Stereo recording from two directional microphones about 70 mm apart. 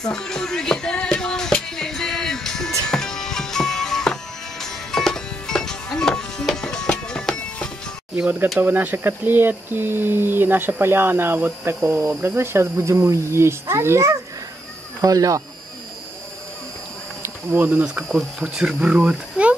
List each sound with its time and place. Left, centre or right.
0.1 s a sound: centre
2.9 s music: centre
8.5 s speech: right
15.0 s speech: right
17.2 s insect: right
18.0 s speech: centre